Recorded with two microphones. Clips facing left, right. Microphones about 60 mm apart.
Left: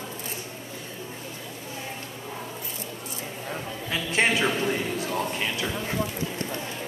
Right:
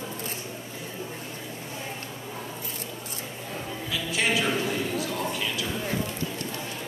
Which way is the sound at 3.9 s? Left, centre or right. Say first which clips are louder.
Left 3 dB; left.